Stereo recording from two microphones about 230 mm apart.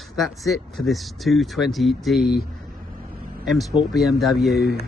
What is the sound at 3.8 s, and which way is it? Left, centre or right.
Speech, left.